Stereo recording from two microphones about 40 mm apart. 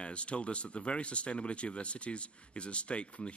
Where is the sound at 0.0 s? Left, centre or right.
Left.